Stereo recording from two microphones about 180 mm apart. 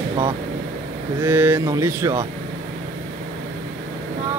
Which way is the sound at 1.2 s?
10° right (ahead or behind).